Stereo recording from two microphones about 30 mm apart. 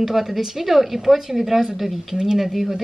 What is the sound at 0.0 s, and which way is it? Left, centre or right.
A woman's voice, centre.